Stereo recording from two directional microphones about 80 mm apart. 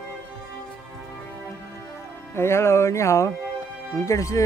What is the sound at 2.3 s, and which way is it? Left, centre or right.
Speech, left.